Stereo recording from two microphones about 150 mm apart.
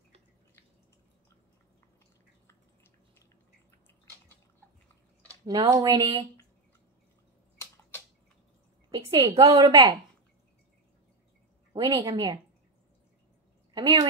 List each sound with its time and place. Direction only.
5.5 s speech: 25° right (ahead or behind)
8.9 s a woman's voice: 25° right (ahead or behind)
9.6 s speech: 35° right (ahead or behind)
11.7 s speech: 30° right (ahead or behind)
13.7 s speech: 25° right (ahead or behind)